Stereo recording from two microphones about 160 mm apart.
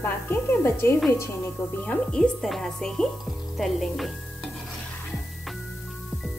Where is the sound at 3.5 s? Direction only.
Centre (ahead or behind).